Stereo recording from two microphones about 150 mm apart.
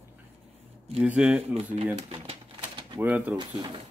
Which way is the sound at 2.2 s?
40° right (ahead or behind).